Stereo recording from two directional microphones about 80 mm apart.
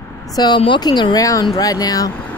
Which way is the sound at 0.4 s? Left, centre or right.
Left.